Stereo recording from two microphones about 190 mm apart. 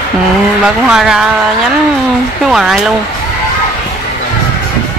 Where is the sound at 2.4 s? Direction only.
Centre (ahead or behind).